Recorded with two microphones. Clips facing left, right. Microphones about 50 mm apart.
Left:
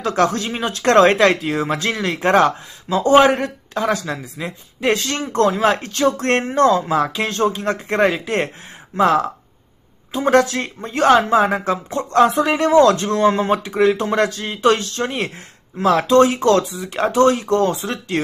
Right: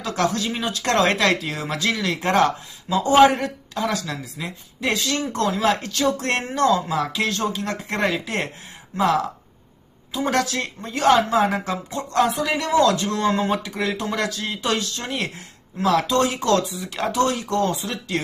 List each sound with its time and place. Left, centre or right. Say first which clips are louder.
0.0 s a man's voice: left 5 dB; left
4.7 s a man's voice: left 4 dB; left